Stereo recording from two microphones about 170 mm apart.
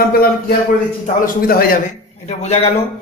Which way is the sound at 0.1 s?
65° left (ahead or behind).